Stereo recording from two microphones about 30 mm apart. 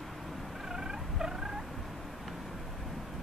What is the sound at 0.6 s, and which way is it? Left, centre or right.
Turkey, centre.